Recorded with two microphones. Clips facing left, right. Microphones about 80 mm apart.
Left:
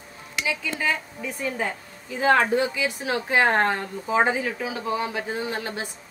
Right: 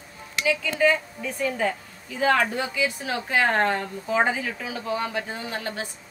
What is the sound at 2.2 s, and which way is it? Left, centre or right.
A woman's voice, left.